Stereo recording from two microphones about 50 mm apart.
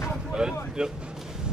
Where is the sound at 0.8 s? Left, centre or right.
Centre.